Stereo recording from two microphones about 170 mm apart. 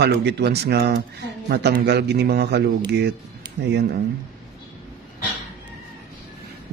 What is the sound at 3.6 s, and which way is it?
Speech, 90° right.